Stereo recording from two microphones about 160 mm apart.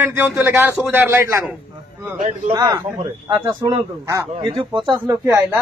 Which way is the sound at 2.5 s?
25° right (ahead or behind).